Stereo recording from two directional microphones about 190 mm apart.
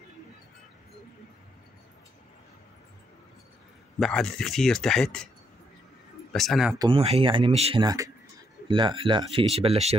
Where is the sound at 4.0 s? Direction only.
5° left (ahead or behind).